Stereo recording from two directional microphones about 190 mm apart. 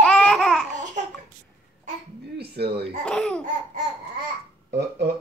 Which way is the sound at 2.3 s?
60° right (ahead or behind).